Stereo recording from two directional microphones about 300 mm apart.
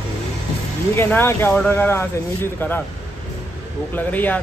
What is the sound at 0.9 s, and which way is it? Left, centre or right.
Speech, centre.